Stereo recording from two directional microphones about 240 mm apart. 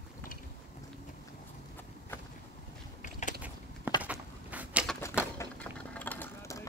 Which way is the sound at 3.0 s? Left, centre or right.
Left.